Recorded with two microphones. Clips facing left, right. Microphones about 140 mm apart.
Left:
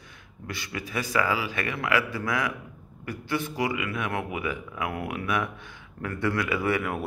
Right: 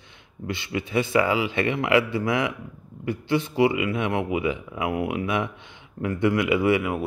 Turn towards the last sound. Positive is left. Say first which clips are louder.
# right 5 dB
turn(degrees=-15)  # may be behind; listen again after turning